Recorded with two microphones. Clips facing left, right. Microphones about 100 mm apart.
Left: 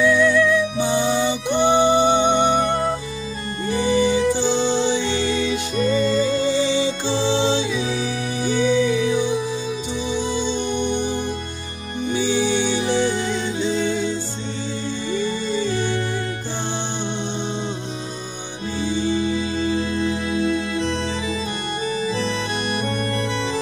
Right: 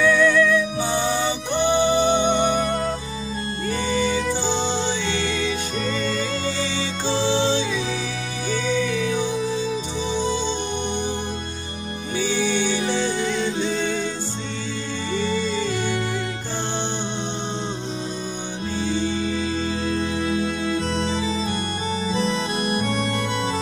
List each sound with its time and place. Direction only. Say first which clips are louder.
0.0 s music: left 1 dB; 15° left (ahead or behind)
3.6 s music: left 5 dB; 15° left (ahead or behind)
4.5 s music: left 4 dB; 15° right (ahead or behind)
4.7 s music: left 4 dB; 15° left (ahead or behind)
12.2 s music: left 2 dB; 15° left (ahead or behind)
18.9 s music: left 3 dB; 15° left (ahead or behind)
20.9 s organ: right 1 dB; 20° right (ahead or behind)